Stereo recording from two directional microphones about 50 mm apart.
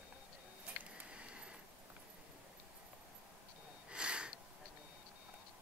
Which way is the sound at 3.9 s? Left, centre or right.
Centre.